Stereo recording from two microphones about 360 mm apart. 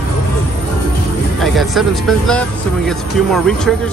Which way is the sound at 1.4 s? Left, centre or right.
Centre.